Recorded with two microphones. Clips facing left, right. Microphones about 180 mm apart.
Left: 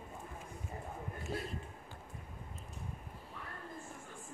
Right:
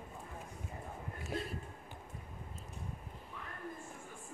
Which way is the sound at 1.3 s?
15° right (ahead or behind).